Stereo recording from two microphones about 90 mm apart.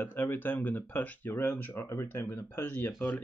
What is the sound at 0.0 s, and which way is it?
Speech, 25° left (ahead or behind).